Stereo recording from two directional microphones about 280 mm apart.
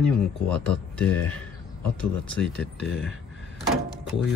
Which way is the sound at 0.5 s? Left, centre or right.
Centre.